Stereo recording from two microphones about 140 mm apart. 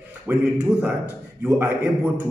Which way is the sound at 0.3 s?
15° right (ahead or behind).